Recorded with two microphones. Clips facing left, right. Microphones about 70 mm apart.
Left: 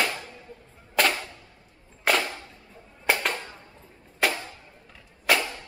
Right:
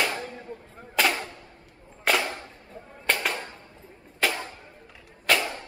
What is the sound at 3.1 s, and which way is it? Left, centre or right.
Music, centre.